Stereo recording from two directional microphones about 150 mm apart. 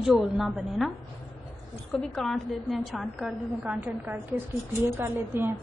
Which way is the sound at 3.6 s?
10° right (ahead or behind).